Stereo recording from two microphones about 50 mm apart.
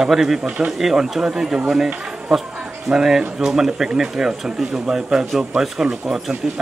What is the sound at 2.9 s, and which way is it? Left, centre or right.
Speech, centre.